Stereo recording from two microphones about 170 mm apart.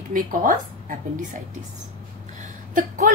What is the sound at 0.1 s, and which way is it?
A woman's voice, 55° right (ahead or behind).